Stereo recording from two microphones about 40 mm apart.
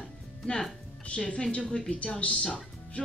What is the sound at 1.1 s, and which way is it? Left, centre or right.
Speech, left.